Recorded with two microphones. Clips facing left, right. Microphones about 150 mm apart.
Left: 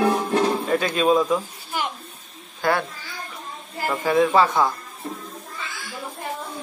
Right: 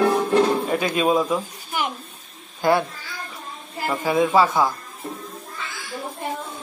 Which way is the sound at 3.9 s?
10° right (ahead or behind).